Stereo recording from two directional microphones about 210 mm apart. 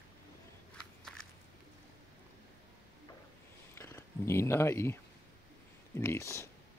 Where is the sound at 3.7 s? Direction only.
10° left (ahead or behind).